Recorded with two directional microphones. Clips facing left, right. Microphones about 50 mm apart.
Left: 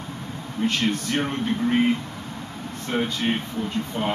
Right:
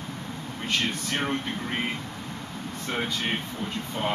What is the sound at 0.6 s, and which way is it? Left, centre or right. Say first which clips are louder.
Speech: left 8 dB; right.